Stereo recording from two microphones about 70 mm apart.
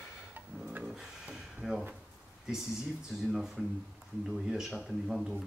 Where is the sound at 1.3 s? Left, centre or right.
Centre.